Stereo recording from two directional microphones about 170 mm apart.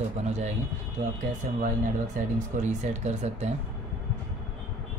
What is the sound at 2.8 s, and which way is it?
Speech, 40° right (ahead or behind).